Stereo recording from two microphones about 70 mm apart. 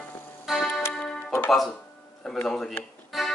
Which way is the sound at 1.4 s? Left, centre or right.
Centre.